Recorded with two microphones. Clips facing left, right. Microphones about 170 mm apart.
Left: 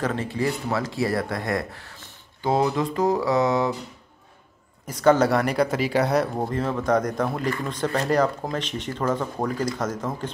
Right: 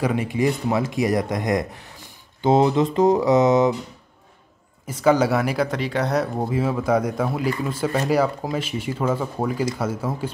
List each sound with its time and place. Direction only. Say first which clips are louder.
0.0 s speech: right 4 dB; 10° right (ahead or behind)
4.8 s speech: even; 5° right (ahead or behind)